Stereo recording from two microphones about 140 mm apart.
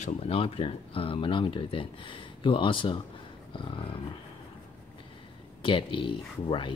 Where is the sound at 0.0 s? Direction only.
45° left (ahead or behind).